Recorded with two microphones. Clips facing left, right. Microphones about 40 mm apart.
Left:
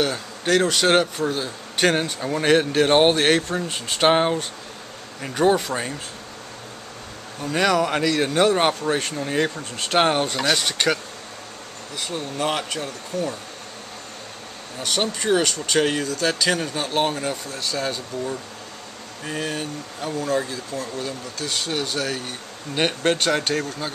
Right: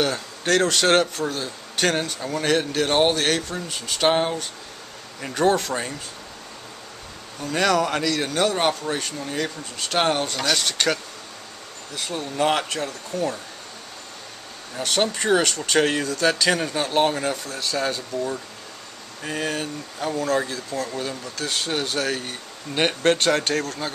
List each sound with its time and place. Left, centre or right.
0.0 s a man's voice: centre
5.2 s a man's voice: centre
7.4 s a man's voice: centre
12.0 s speech: centre
14.8 s speech: centre